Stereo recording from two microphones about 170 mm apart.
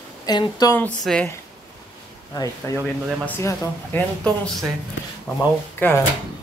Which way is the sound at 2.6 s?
15° left (ahead or behind).